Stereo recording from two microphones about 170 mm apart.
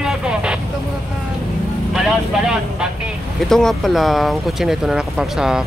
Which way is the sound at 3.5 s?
5° left (ahead or behind).